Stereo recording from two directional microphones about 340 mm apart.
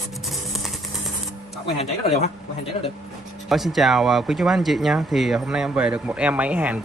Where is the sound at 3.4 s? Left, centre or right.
Centre.